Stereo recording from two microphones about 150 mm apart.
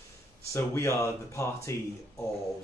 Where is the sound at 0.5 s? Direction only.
20° left (ahead or behind).